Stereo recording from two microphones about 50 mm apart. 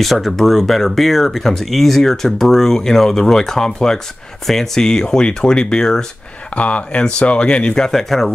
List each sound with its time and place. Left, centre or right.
0.0 s speech: centre
6.5 s speech: left; by 8.3 s centre